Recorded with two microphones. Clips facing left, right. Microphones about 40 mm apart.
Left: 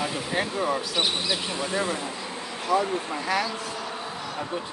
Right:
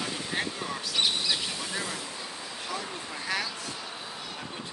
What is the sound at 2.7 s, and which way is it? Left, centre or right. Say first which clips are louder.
Speech: left 14 dB; centre.